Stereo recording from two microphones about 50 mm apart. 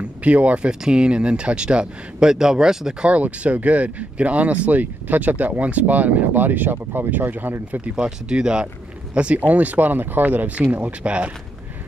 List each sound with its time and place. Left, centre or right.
0.2 s speech: right; by 3.1 s centre
3.1 s speech: right
7.9 s speech: centre